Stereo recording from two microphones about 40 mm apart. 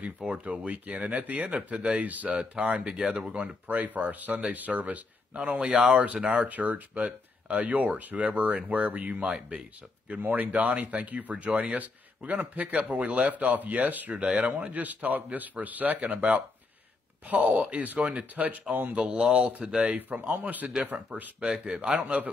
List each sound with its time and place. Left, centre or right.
0.0 s speech: right
2.9 s speech: centre
3.3 s speech: right
3.6 s speech: right
5.9 s speech: right
9.2 s speech: centre
10.2 s speech: right
17.3 s speech: right
18.9 s speech: right
20.1 s speech: right
20.8 s speech: right
21.4 s speech: right
22.0 s speech: right